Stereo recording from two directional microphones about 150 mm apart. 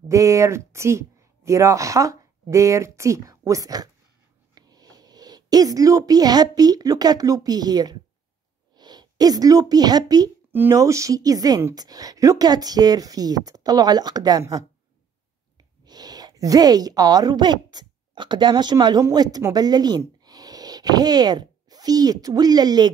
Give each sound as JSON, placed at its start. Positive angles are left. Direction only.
{"t": 0.1, "sound": "a woman's voice", "side_deg": -20}